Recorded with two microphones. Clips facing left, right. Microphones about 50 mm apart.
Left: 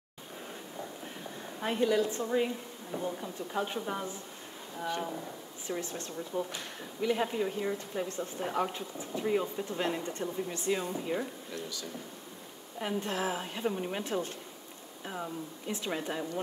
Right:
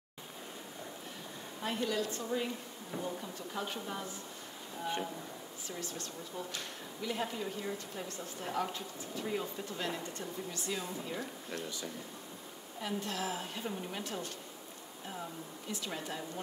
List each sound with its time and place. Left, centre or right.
1.6 s a woman's voice: left
5.7 s speech: left
12.8 s speech: left